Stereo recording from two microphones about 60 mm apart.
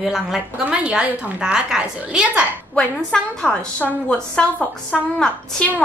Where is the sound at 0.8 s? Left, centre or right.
Centre.